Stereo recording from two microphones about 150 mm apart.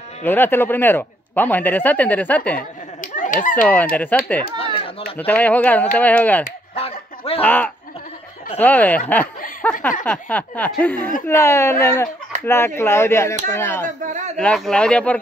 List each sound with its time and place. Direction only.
0.2 s speech: 15° left (ahead or behind)
3.0 s a sound: 60° left (ahead or behind)
3.6 s speech: 10° left (ahead or behind)
4.6 s a sound: 35° left (ahead or behind)
5.1 s speech: 10° left (ahead or behind)
6.7 s finger snapping: 40° left (ahead or behind)
7.4 s speech: 10° left (ahead or behind)
14.0 s a sound: 50° right (ahead or behind)
14.3 s speech: 5° left (ahead or behind)